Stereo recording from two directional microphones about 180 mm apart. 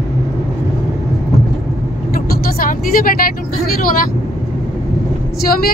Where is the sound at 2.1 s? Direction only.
55° left (ahead or behind).